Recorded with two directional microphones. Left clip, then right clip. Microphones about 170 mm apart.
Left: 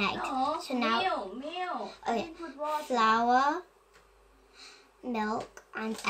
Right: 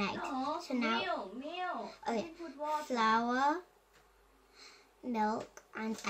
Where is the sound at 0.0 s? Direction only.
25° right (ahead or behind).